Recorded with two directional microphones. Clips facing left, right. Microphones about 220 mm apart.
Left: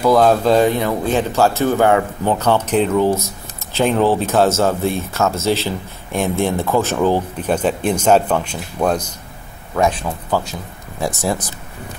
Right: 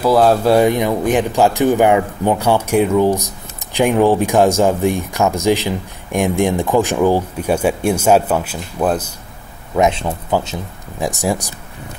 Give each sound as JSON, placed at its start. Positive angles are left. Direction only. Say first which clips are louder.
{"t": 0.0, "sound": "speech", "louder": "even", "side_deg": -5}
{"t": 9.8, "sound": "speech", "louder": "right 2 dB", "side_deg": -20}